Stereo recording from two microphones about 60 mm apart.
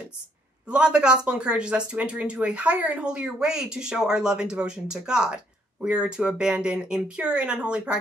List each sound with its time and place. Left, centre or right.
0.7 s speech: centre